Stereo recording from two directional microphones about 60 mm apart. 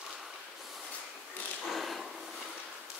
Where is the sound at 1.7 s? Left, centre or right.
Centre.